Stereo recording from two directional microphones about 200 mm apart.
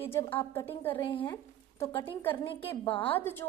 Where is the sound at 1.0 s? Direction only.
25° left (ahead or behind).